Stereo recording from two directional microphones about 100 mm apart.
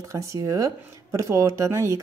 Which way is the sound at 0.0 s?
30° right (ahead or behind).